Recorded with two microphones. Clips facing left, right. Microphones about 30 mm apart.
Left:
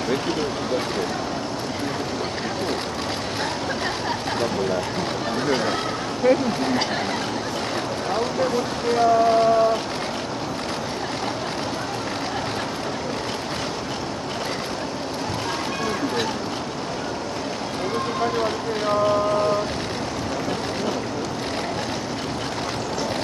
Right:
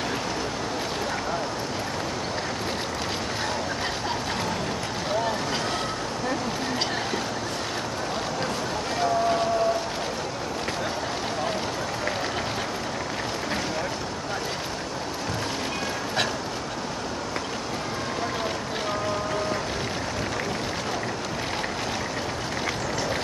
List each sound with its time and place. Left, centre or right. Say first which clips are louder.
6.2 s speech: left 12 dB; left